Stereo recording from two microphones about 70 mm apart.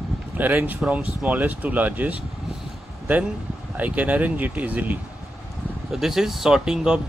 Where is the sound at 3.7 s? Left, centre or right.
Right.